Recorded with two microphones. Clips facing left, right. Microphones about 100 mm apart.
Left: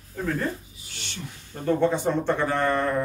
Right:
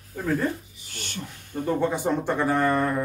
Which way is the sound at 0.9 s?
50° right (ahead or behind).